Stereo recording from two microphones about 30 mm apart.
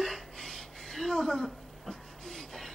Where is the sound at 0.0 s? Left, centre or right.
Centre.